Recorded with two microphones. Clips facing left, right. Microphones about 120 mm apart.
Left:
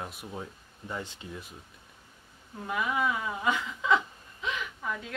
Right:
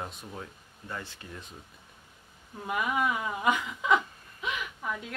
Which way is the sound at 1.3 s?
5° left (ahead or behind).